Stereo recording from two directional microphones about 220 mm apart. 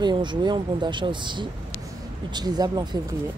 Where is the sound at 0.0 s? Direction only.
20° right (ahead or behind).